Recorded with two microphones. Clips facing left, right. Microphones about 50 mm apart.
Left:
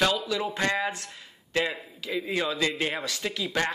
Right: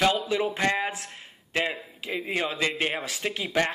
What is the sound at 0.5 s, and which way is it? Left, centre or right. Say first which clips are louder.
Speech: right 1 dB; centre.